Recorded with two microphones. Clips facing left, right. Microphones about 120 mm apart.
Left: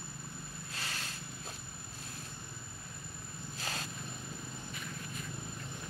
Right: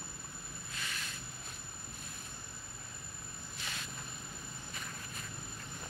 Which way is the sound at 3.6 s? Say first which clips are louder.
Left 5 dB; 40° left (ahead or behind).